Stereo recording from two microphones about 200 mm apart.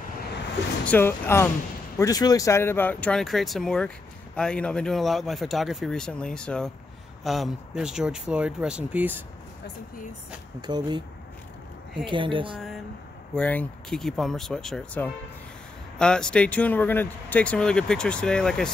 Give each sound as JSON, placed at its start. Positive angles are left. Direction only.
{"t": 0.8, "sound": "speech", "side_deg": 10}
{"t": 10.7, "sound": "speech", "side_deg": -20}
{"t": 12.1, "sound": "speech", "side_deg": -25}
{"t": 13.3, "sound": "speech", "side_deg": 5}